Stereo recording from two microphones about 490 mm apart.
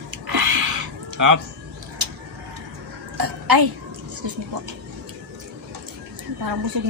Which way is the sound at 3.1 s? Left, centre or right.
Right.